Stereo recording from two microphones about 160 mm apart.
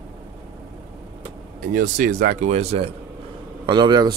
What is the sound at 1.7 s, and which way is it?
Speech, 55° right (ahead or behind).